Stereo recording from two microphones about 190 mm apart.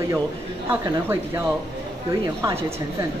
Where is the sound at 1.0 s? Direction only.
15° right (ahead or behind).